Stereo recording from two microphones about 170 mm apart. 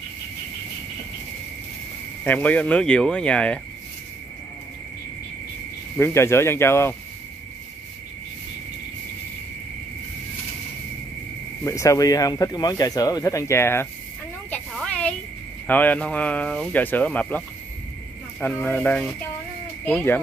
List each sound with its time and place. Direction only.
2.2 s speech: 10° left (ahead or behind)
5.9 s speech: 15° left (ahead or behind)
11.6 s speech: 20° left (ahead or behind)
14.5 s a sound: 5° left (ahead or behind)
15.6 s speech: 10° left (ahead or behind)
18.4 s speech: 10° left (ahead or behind)